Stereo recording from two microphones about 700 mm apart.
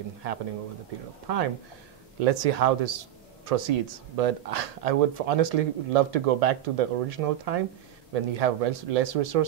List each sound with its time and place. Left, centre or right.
1.2 s speech: right